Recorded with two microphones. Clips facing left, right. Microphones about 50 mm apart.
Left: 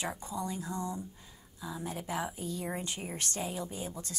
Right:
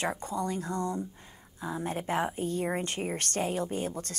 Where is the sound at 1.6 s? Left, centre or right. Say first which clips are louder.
Right 6 dB; right.